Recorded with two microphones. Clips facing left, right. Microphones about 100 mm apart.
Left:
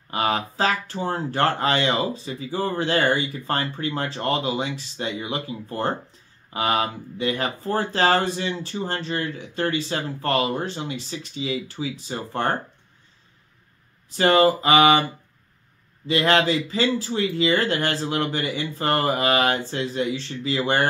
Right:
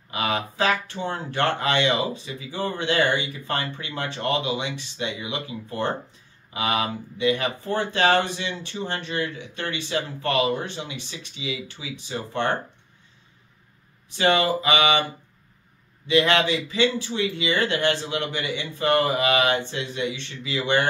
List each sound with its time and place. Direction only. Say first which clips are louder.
0.1 s speech: left 2 dB; 35° left (ahead or behind)
14.1 s speech: left 4 dB; 35° left (ahead or behind)
16.1 s speech: left 1 dB; 35° left (ahead or behind)